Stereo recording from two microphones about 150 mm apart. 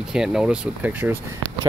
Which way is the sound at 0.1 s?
5° right (ahead or behind).